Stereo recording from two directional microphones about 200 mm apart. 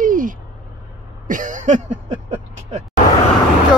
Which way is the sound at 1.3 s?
40° right (ahead or behind).